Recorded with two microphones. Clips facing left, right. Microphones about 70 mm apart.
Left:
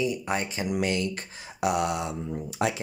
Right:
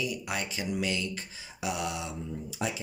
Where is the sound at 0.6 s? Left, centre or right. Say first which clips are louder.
Left 5 dB; left.